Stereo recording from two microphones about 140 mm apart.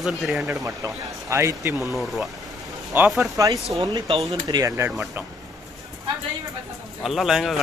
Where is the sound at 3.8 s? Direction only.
30° right (ahead or behind).